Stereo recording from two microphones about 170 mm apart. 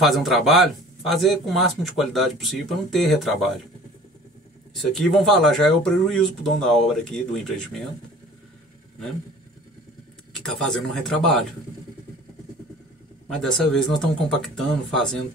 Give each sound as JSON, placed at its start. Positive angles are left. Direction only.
{"t": 0.0, "sound": "speech", "side_deg": 0}
{"t": 4.7, "sound": "speech", "side_deg": 0}
{"t": 10.3, "sound": "speech", "side_deg": 0}
{"t": 13.4, "sound": "speech", "side_deg": 5}